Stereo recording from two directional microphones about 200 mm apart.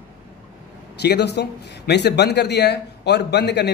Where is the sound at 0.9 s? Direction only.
55° left (ahead or behind).